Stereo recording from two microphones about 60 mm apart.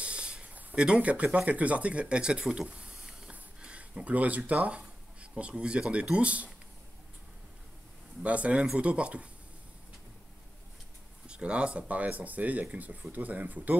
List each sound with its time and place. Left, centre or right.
0.0 s a sound: centre
0.7 s speech: centre
8.2 s speech: right
11.2 s speech: centre